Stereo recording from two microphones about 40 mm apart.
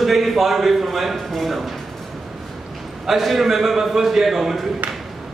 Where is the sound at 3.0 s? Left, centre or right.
Centre.